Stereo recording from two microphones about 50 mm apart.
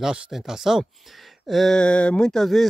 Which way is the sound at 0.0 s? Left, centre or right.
Centre.